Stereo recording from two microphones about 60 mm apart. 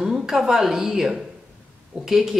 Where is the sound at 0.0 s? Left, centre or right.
Centre.